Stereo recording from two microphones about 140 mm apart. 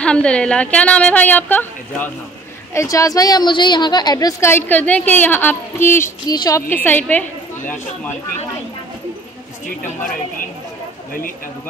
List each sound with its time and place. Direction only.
0.0 s a woman's voice: 5° left (ahead or behind)
6.3 s a woman's voice: 30° left (ahead or behind)
6.7 s a woman's voice: 15° left (ahead or behind)